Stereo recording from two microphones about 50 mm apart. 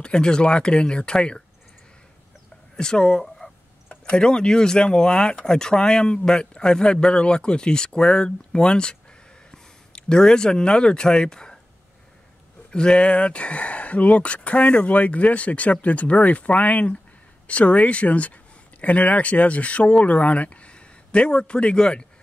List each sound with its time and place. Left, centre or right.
0.0 s speech: centre
2.7 s a sound: centre
4.0 s speech: centre
12.7 s speech: centre